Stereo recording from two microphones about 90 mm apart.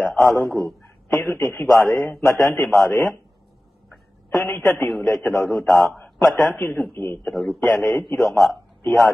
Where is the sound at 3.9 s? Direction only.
Centre (ahead or behind).